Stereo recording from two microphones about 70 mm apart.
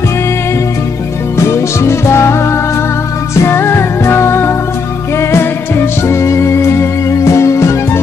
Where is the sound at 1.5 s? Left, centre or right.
Left.